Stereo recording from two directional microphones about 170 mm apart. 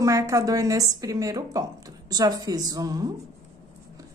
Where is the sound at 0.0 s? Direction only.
20° right (ahead or behind).